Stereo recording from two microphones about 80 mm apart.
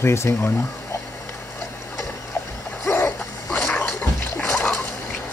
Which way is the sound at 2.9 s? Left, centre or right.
Left.